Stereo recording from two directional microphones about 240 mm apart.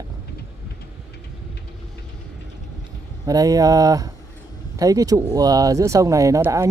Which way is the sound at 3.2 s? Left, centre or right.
Centre.